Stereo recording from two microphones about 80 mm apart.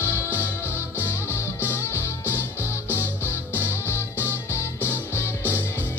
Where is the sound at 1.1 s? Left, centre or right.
Left.